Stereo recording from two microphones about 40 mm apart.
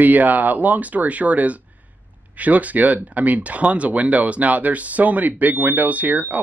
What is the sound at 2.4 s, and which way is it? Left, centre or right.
Speech, right.